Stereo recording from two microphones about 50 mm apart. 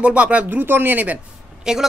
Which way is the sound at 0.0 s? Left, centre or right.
Right.